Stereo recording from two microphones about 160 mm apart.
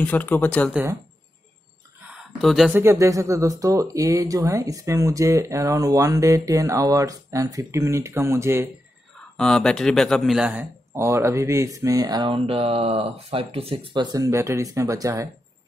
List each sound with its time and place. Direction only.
0.0 s speech: 10° left (ahead or behind)
2.4 s speech: centre (ahead or behind)
2.7 s speech: 15° right (ahead or behind)
9.4 s speech: 5° left (ahead or behind)
10.9 s speech: 15° right (ahead or behind)